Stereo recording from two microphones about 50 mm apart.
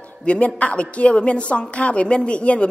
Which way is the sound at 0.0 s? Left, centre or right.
Left.